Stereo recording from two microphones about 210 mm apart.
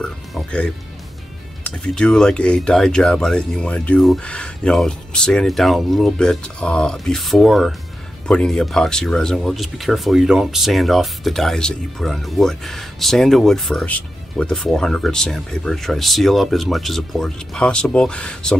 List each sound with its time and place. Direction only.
0.0 s speech: 5° left (ahead or behind)